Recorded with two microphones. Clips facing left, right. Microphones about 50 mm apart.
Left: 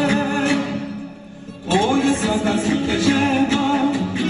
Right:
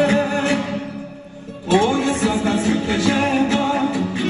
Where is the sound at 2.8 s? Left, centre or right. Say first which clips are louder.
Left 1 dB; right.